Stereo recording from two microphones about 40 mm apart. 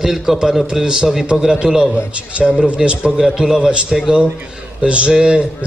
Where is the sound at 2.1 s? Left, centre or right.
Right.